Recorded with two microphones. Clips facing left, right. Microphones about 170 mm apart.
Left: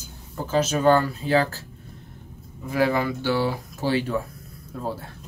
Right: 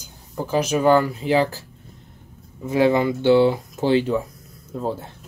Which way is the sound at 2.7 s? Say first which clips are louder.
Right 5 dB; 20° right (ahead or behind).